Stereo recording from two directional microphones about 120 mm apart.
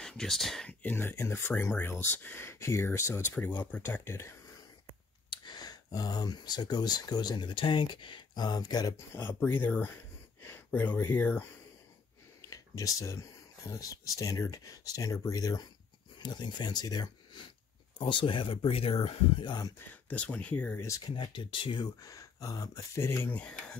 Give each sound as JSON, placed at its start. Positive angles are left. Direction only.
{"t": 0.0, "sound": "speech", "side_deg": 5}
{"t": 0.8, "sound": "speech", "side_deg": 20}
{"t": 5.3, "sound": "speech", "side_deg": 35}
{"t": 9.1, "sound": "speech", "side_deg": 20}
{"t": 12.4, "sound": "speech", "side_deg": 30}
{"t": 17.9, "sound": "speech", "side_deg": 45}
{"t": 19.9, "sound": "speech", "side_deg": 10}
{"t": 21.0, "sound": "speech", "side_deg": 40}